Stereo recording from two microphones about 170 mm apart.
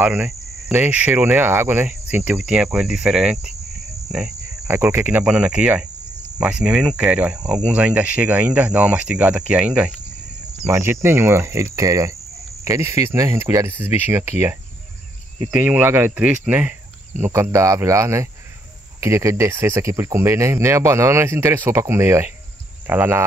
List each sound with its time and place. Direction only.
0.0 s speech: 15° right (ahead or behind)
2.4 s cricket: 5° right (ahead or behind)
4.8 s speech: 5° right (ahead or behind)
15.5 s speech: 10° right (ahead or behind)